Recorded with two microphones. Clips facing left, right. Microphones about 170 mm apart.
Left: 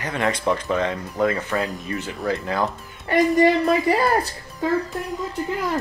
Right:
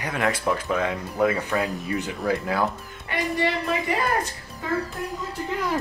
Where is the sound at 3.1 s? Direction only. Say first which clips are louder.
Left 9 dB; 40° left (ahead or behind).